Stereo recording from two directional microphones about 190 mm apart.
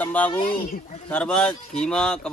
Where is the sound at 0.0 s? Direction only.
10° left (ahead or behind).